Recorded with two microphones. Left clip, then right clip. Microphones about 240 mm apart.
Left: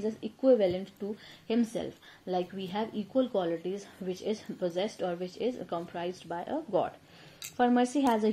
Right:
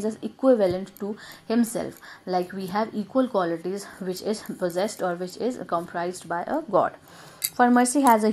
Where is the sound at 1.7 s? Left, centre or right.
Right.